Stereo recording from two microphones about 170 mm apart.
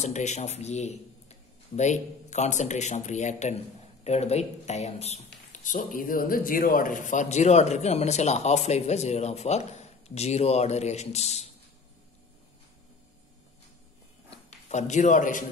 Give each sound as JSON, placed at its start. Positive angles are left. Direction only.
{"t": 0.0, "sound": "a man's voice", "side_deg": 45}
{"t": 14.3, "sound": "a man's voice", "side_deg": 40}